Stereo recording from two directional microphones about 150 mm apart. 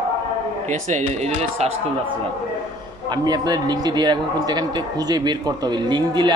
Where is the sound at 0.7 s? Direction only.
50° right (ahead or behind).